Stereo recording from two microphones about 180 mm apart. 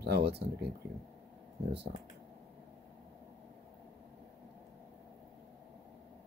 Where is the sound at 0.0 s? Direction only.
65° right (ahead or behind).